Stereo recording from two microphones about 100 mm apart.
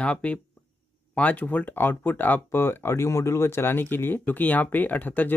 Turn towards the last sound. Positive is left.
turn(degrees=15)  # may be behind; listen again after turning